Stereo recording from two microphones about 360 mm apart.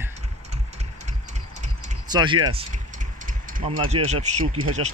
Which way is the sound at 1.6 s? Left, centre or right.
Centre.